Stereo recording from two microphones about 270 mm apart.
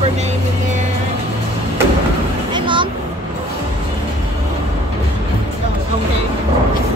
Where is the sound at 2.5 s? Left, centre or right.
Centre.